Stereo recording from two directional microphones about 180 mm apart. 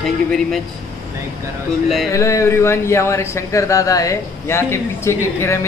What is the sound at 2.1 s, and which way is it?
Speech, 15° left (ahead or behind).